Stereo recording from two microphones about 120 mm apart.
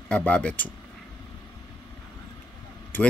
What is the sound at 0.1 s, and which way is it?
Speech, 10° left (ahead or behind).